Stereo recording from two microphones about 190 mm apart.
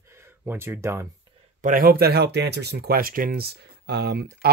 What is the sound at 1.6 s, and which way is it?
Speech, 45° right (ahead or behind).